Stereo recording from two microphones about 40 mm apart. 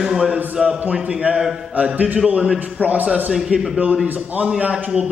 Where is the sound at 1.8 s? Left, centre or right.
Right.